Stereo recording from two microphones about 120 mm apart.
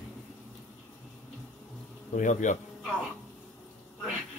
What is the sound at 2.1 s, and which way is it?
Speech, 90° left.